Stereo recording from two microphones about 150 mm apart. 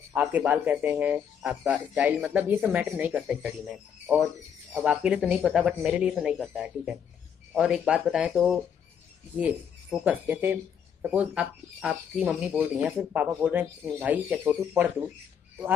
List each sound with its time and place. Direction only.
0.1 s speech: 10° right (ahead or behind)